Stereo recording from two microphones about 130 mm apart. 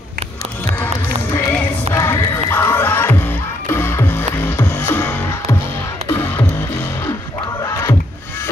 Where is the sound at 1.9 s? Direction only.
20° left (ahead or behind).